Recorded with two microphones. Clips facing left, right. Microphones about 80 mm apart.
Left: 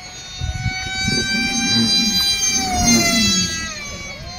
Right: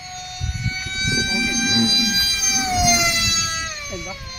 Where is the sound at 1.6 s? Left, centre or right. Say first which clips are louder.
Even; right.